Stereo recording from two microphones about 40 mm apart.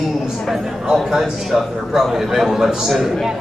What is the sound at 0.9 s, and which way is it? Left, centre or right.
A man's voice, centre.